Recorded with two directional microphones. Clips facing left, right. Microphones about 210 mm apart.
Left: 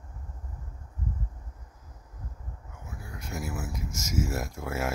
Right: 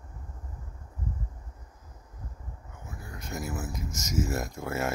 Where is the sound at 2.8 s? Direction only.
5° left (ahead or behind).